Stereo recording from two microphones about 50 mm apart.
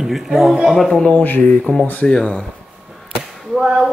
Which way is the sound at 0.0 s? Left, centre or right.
Centre.